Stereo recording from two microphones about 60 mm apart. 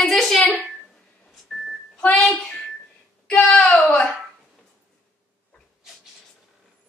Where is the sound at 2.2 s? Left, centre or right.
Centre.